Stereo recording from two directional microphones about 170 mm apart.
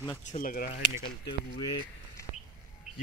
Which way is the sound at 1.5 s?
25° left (ahead or behind).